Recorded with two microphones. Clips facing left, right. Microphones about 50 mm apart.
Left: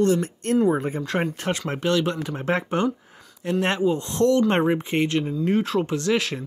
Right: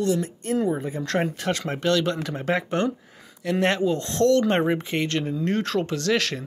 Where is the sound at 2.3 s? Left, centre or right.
Left; by 6.4 s centre.